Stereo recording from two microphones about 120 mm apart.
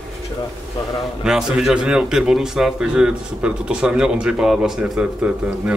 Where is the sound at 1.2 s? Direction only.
5° right (ahead or behind).